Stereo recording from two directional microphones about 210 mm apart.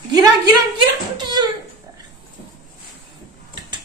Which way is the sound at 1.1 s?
20° right (ahead or behind).